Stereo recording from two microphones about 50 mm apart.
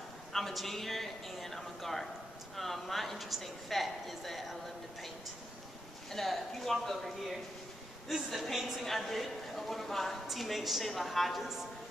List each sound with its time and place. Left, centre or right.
0.3 s a woman's voice: centre
6.1 s a woman's voice: centre